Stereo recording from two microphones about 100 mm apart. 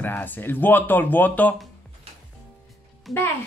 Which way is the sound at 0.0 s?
20° left (ahead or behind).